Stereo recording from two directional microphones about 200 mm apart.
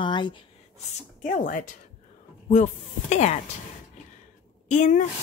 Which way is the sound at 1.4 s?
40° left (ahead or behind).